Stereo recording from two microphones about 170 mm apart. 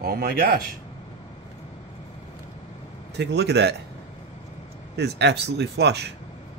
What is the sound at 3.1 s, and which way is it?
Speech, 85° right.